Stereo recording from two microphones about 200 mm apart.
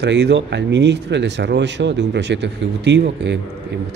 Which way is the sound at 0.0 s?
60° right (ahead or behind).